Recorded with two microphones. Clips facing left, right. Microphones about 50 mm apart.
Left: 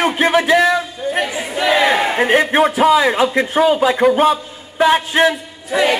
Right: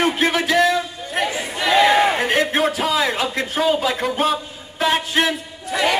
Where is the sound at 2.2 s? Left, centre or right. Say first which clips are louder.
Left 5 dB; centre.